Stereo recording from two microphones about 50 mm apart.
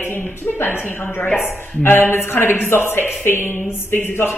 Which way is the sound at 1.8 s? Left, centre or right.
Left.